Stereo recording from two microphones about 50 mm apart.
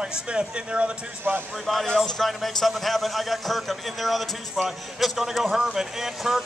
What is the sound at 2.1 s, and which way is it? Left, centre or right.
A man's voice, centre.